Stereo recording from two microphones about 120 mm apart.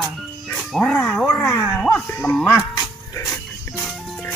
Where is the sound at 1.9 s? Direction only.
10° left (ahead or behind).